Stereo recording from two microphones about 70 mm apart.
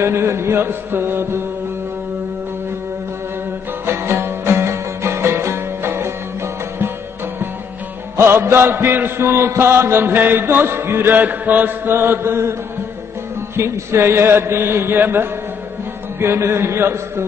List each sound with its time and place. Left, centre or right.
0.0 s chant: right
3.8 s music: right
8.2 s chant: right
13.6 s chant: right